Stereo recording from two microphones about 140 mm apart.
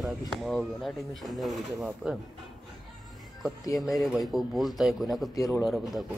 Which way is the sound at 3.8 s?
Centre (ahead or behind).